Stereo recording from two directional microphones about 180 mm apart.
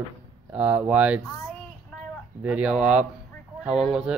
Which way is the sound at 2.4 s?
5° right (ahead or behind).